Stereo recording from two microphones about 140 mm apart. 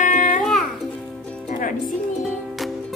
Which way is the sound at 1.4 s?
70° left (ahead or behind).